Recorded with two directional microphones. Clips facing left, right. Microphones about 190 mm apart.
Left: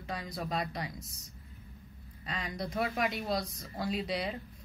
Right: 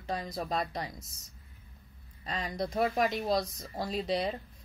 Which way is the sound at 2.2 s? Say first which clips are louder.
Right 3 dB; 40° right (ahead or behind).